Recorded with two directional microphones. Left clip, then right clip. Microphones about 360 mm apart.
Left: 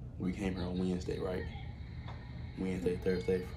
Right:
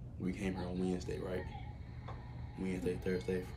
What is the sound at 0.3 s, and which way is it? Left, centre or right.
Speech, centre.